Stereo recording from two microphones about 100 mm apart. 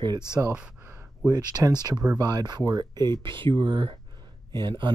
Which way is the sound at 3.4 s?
55° right (ahead or behind).